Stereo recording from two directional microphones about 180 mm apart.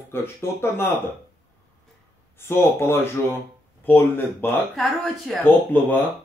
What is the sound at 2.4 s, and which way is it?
A woman's voice, 15° left (ahead or behind).